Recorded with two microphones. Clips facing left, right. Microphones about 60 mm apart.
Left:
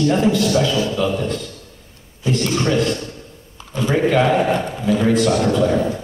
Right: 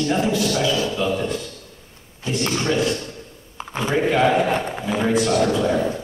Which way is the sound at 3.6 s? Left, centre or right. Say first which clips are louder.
Left 3 dB; right.